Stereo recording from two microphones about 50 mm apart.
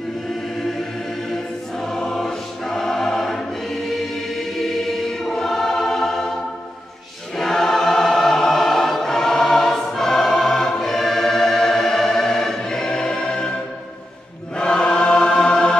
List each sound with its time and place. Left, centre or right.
1.3 s choir: centre
7.3 s choir: centre
14.6 s choir: centre